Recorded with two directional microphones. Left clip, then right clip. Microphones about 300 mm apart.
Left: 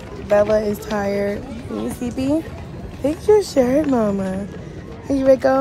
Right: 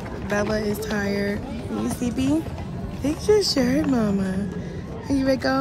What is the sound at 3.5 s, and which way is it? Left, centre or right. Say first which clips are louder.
Speech: left 6 dB; centre.